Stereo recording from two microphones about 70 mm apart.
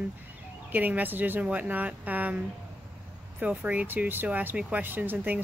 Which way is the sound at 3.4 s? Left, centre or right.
Right.